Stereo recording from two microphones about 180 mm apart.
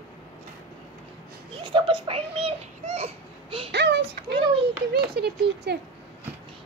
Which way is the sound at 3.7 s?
70° right (ahead or behind).